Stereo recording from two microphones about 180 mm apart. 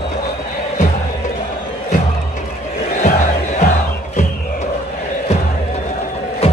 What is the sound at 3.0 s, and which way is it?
Battle cry, 40° left (ahead or behind).